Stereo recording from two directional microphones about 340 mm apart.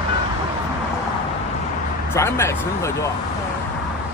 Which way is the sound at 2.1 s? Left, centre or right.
Centre.